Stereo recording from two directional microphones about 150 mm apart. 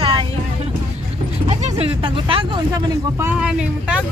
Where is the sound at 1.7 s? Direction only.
35° right (ahead or behind).